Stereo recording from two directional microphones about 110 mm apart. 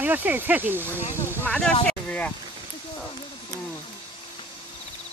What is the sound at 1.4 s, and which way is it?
Speech, 10° left (ahead or behind).